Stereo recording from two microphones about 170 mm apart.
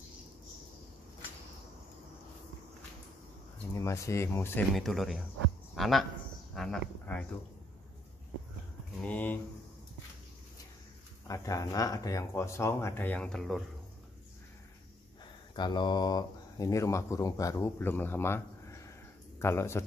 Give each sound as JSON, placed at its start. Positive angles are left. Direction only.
{"t": 3.7, "sound": "speech", "side_deg": 20}
{"t": 4.7, "sound": "speech", "side_deg": 0}
{"t": 9.0, "sound": "speech", "side_deg": 10}
{"t": 11.2, "sound": "speech", "side_deg": 20}
{"t": 15.5, "sound": "speech", "side_deg": 25}